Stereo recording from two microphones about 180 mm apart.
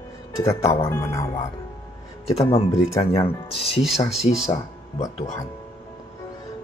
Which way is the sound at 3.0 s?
30° left (ahead or behind).